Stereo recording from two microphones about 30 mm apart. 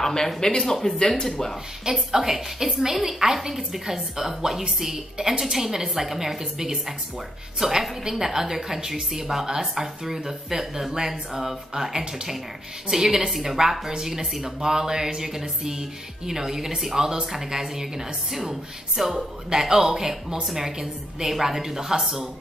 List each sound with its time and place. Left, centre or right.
0.0 s speech: centre
0.9 s speech: left
1.2 s speech: centre
2.1 s a woman's voice: centre
5.1 s a woman's voice: right
5.4 s a woman's voice: centre